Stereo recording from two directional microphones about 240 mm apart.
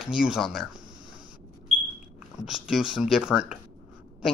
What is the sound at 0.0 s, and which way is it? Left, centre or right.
Speech, centre.